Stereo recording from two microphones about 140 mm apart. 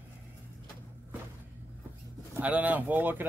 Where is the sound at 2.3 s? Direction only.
10° right (ahead or behind).